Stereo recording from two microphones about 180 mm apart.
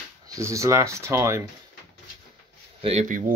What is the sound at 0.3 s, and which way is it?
Speech, 15° right (ahead or behind).